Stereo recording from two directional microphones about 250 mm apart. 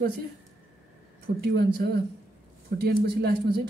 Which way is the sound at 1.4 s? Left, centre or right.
Right.